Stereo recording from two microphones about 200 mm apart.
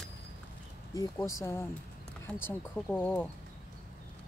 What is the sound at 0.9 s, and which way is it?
Speech, 15° left (ahead or behind).